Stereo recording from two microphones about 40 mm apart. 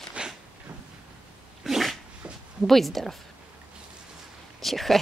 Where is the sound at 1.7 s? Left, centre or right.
Centre.